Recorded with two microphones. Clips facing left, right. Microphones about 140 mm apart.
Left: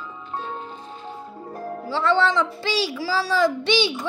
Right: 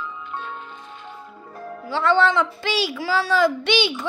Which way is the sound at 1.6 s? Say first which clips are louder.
Right 1 dB; 35° left (ahead or behind).